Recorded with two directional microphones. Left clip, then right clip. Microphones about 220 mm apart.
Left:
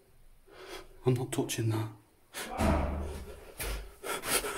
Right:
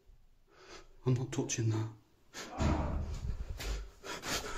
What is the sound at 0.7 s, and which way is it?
Speech, 5° left (ahead or behind).